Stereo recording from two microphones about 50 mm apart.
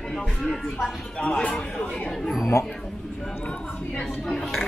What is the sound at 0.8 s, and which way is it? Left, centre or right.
Speech, centre.